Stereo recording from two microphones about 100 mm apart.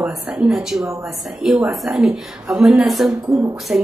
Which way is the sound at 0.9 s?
30° right (ahead or behind).